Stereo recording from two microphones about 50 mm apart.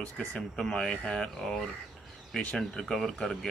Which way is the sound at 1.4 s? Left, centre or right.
Centre.